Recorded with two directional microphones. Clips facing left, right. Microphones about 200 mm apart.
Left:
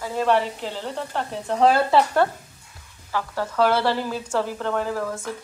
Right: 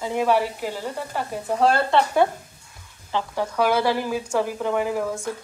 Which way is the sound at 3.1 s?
15° right (ahead or behind).